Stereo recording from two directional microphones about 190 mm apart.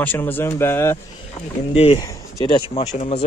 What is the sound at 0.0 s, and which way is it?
Speech, 10° left (ahead or behind).